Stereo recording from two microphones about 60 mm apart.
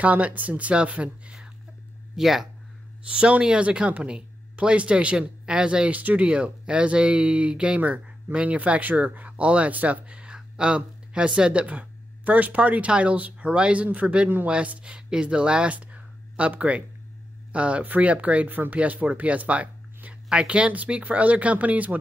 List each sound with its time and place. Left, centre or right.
0.0 s speech: right
2.1 s speech: centre
3.1 s speech: centre